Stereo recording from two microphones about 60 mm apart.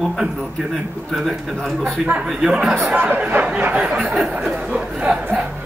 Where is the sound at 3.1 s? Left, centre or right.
Right.